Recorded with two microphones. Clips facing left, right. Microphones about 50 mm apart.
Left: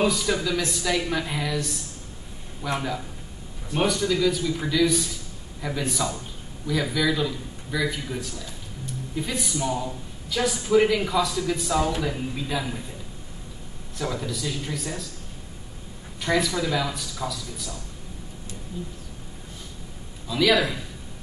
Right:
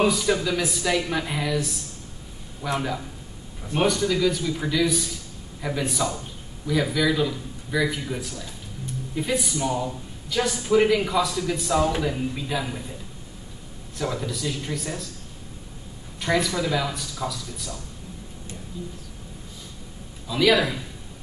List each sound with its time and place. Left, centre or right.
0.0 s speech: centre
3.8 s speech: centre
13.9 s speech: centre
16.2 s speech: centre
18.7 s speech: left
20.2 s speech: centre